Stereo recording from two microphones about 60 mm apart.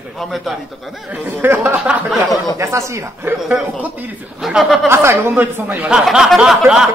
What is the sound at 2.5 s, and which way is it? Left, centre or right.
Speech, right.